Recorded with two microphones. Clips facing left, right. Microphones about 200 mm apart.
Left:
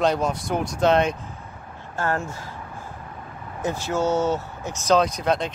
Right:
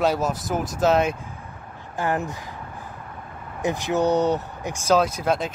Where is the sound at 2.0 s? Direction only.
15° right (ahead or behind).